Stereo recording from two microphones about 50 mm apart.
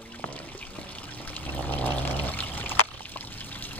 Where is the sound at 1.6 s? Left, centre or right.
Left.